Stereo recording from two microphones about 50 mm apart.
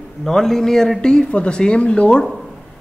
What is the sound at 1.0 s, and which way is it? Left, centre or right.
Speech, centre.